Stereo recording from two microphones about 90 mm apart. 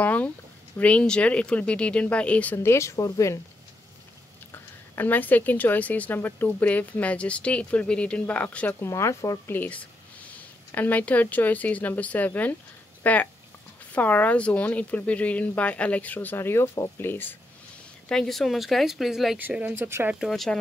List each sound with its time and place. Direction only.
0.0 s a woman's voice: 20° left (ahead or behind)
2.5 s speech: 30° left (ahead or behind)
4.5 s a woman's voice: 20° left (ahead or behind)
8.8 s speech: 35° left (ahead or behind)
9.5 s a woman's voice: 15° left (ahead or behind)
18.0 s speech: 5° left (ahead or behind)
19.3 s speech: 20° right (ahead or behind)
20.2 s speech: 5° left (ahead or behind)